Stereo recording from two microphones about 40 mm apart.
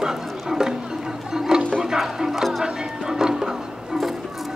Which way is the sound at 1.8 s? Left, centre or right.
Centre.